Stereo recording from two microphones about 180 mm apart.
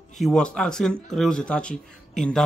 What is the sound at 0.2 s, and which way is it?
A man's voice, 5° left (ahead or behind).